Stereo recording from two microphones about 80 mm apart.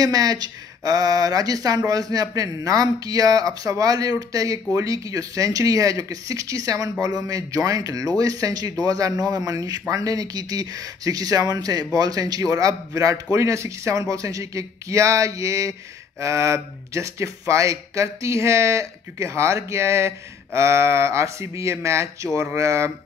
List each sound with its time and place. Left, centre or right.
0.0 s speech: right